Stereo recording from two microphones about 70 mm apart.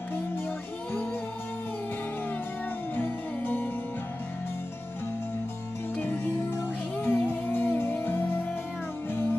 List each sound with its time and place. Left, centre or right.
3.0 s music: left
5.9 s music: left